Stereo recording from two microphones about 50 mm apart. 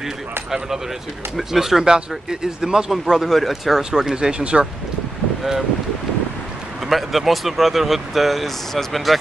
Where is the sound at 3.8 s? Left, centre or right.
Centre.